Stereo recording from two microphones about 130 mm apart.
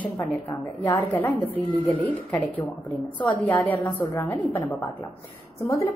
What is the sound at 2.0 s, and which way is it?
A woman's voice, 10° left (ahead or behind).